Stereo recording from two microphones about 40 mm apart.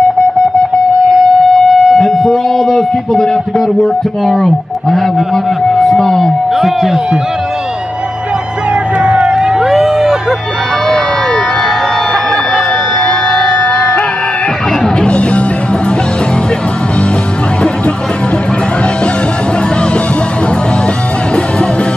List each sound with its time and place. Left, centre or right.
1.7 s speech: centre
6.5 s speech: centre
9.0 s vehicle: right
9.4 s crowd: centre
9.7 s a sound: centre
13.0 s a sound: centre
15.0 s music: left